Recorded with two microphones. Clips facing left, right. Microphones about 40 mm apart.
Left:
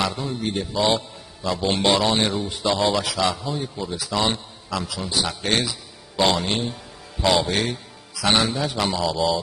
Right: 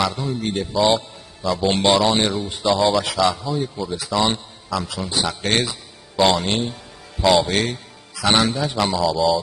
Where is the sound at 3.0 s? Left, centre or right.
Centre.